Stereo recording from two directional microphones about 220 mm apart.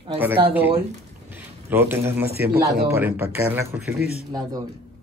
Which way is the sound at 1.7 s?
10° right (ahead or behind).